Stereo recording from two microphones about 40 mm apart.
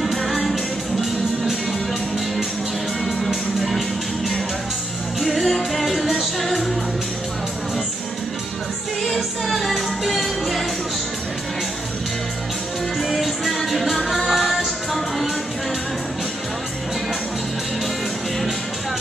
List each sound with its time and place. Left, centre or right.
0.0 s music: centre
5.2 s music: centre
9.0 s music: centre
13.1 s music: centre